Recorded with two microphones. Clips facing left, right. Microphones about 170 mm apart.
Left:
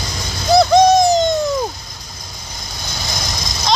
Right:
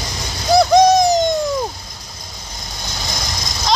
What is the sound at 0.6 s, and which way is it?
Hoot, 15° right (ahead or behind).